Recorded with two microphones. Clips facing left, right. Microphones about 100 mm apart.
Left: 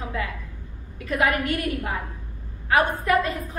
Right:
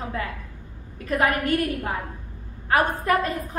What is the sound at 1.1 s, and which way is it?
A woman's voice, 40° right (ahead or behind).